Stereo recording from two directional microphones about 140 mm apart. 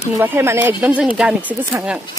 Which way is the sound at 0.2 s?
15° right (ahead or behind).